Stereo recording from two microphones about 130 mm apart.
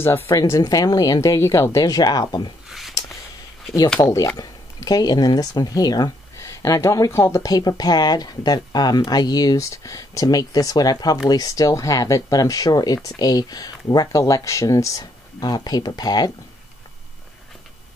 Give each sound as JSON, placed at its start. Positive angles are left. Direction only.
{"t": 0.3, "sound": "speech", "side_deg": 25}
{"t": 4.0, "sound": "speech", "side_deg": 25}